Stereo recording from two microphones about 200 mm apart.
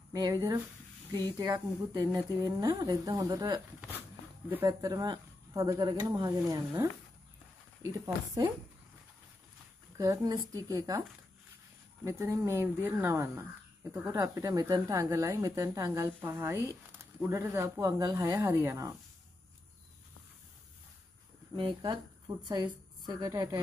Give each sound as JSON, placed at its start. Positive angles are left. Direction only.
{"t": 0.1, "sound": "speech", "side_deg": -20}
{"t": 9.9, "sound": "speech", "side_deg": -15}
{"t": 21.5, "sound": "a woman's voice", "side_deg": -20}